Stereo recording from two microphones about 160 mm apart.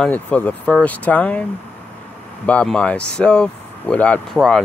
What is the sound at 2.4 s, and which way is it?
Speech, 5° left (ahead or behind).